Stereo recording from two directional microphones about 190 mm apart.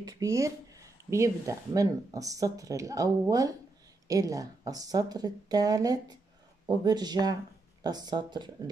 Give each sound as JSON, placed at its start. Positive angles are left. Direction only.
{"t": 0.0, "sound": "speech", "side_deg": -15}